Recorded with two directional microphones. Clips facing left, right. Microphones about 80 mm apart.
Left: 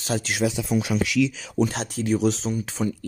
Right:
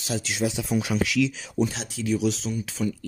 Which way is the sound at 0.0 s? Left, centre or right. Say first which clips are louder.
Left 3 dB; left.